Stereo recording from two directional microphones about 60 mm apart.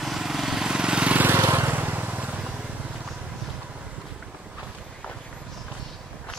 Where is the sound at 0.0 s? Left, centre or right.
Centre.